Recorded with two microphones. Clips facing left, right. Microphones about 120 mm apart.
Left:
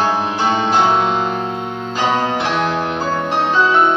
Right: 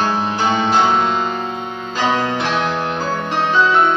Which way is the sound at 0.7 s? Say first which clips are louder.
Left 1 dB; 10° left (ahead or behind).